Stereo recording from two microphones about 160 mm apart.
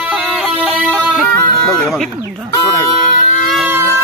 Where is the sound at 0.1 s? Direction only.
5° right (ahead or behind).